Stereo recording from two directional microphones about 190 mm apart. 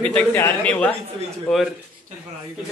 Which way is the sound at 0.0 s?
5° left (ahead or behind).